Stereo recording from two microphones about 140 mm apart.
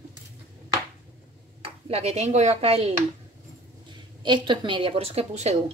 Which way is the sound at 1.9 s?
50° right (ahead or behind).